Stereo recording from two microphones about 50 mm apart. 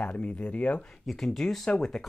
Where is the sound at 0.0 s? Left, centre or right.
Left.